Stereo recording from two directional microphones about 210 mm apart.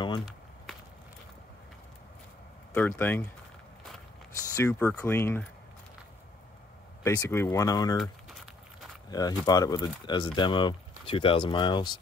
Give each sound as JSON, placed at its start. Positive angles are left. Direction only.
{"t": 2.7, "sound": "speech", "side_deg": 5}
{"t": 4.6, "sound": "speech", "side_deg": 10}
{"t": 7.0, "sound": "speech", "side_deg": 15}
{"t": 9.1, "sound": "speech", "side_deg": 20}